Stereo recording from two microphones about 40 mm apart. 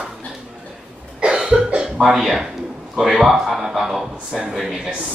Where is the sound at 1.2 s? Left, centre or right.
Centre.